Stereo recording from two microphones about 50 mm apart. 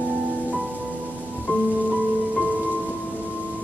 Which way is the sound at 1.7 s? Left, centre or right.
Right.